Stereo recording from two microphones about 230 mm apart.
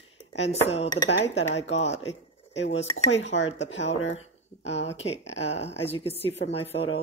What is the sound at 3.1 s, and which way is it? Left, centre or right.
Dishes, left.